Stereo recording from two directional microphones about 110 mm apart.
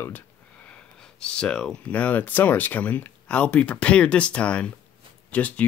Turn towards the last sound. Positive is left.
turn(degrees=15)  # may be behind; listen again after turning